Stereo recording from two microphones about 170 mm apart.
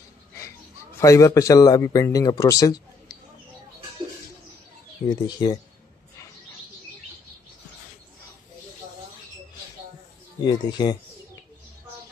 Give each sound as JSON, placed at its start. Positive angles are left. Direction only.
{"t": 0.9, "sound": "speech", "side_deg": 20}
{"t": 5.0, "sound": "speech", "side_deg": 25}
{"t": 10.4, "sound": "speech", "side_deg": 25}